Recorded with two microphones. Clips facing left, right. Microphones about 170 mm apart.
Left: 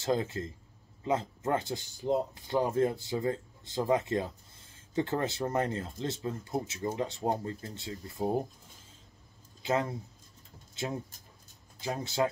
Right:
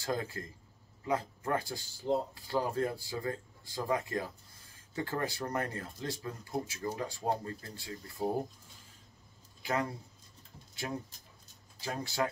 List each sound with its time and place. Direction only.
0.0 s speech: 25° left (ahead or behind)
9.6 s speech: 20° left (ahead or behind)
10.7 s a sound: 20° left (ahead or behind)
11.8 s speech: 20° left (ahead or behind)